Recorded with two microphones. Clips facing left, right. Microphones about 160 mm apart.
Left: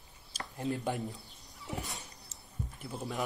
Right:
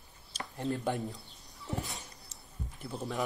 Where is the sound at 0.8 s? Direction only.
Centre (ahead or behind).